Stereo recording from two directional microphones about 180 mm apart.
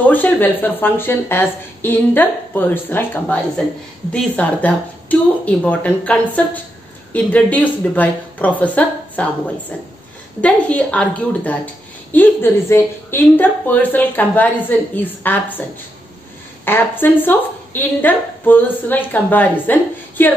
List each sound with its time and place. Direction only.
0.0 s a woman's voice: 10° left (ahead or behind)
16.6 s a woman's voice: 10° left (ahead or behind)